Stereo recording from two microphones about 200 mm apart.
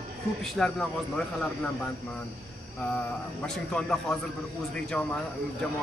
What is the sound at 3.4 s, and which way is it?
Speech, 5° left (ahead or behind).